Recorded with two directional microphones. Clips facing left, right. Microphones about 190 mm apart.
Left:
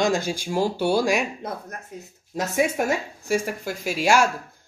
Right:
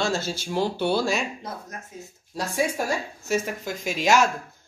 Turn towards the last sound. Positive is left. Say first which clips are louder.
# left 1 dB
turn(degrees=10)  # may be behind; listen again after turning